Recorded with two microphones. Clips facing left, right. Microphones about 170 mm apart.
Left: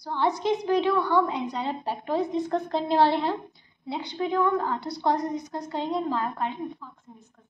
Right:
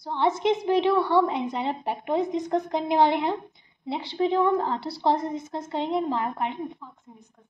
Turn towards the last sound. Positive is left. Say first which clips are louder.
# right 1 dB
turn(degrees=-20)  # may be behind; listen again after turning